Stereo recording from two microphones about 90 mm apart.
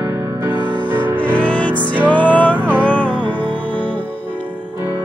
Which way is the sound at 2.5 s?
20° right (ahead or behind).